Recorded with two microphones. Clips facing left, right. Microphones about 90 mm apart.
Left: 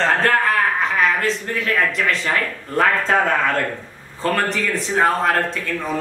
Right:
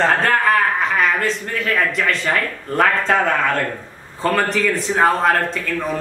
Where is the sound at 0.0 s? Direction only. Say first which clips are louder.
Right 1 dB; centre (ahead or behind).